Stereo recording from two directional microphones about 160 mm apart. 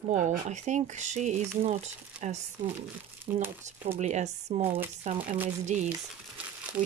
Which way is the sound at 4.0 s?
45° right (ahead or behind).